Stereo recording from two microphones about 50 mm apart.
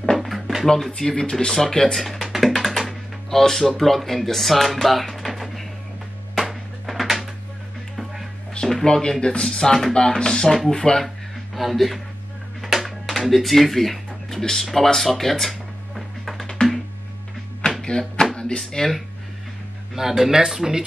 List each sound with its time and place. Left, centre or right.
0.0 s drawer open or close: centre
0.7 s speech: centre
2.0 s music: centre
2.8 s speech: centre
4.8 s music: centre
8.8 s speech: centre
11.5 s speech: centre
12.6 s music: centre
13.0 s speech: centre
16.6 s music: centre
17.8 s music: centre
18.6 s speech: centre
20.0 s speech: centre